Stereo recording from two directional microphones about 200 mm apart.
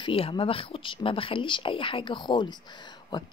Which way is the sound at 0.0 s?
25° left (ahead or behind).